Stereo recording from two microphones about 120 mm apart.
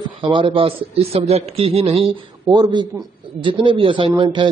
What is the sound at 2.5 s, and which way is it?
A man's voice, 40° right (ahead or behind).